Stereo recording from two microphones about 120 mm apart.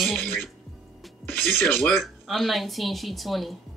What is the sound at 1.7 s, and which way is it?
Speech, 15° left (ahead or behind).